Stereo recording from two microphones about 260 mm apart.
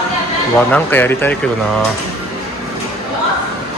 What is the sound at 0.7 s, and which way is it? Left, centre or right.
Speech, centre.